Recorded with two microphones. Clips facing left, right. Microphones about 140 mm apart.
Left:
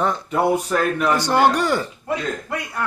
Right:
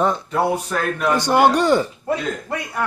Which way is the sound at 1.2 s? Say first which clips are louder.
Right 4 dB; 15° right (ahead or behind).